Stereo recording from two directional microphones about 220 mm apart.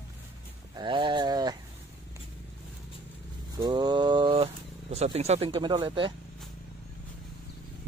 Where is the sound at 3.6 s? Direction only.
20° right (ahead or behind).